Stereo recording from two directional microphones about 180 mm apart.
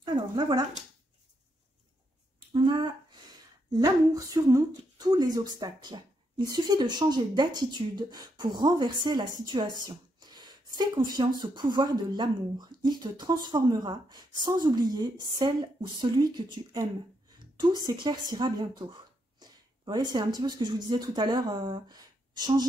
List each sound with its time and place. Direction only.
0.0 s dog: 25° right (ahead or behind)
2.5 s a sound: 25° right (ahead or behind)
3.7 s a woman's voice: 20° right (ahead or behind)